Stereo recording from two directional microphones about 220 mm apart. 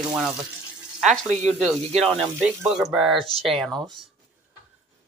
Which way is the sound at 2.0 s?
Centre (ahead or behind).